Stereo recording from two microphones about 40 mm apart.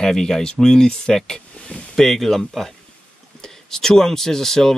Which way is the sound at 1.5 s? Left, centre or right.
Left.